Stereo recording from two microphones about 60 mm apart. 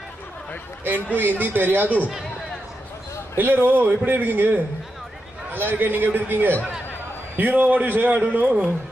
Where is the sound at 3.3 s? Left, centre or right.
Right.